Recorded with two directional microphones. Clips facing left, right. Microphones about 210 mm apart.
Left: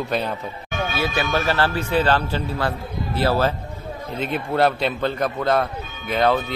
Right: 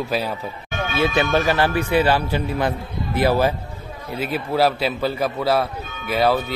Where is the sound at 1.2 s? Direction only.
15° right (ahead or behind).